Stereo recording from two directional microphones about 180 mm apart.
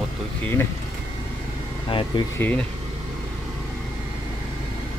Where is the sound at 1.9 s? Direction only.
30° left (ahead or behind).